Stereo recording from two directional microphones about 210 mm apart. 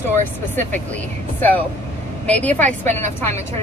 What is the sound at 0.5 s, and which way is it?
Speech, 10° left (ahead or behind).